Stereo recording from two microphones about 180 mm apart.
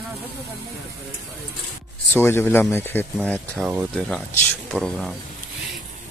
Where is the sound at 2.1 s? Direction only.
15° left (ahead or behind).